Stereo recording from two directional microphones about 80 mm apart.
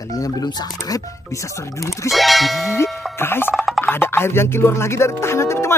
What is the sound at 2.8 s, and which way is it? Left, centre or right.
Ding, left.